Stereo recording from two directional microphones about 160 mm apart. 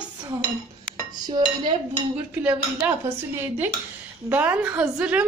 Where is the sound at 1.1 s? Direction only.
25° right (ahead or behind).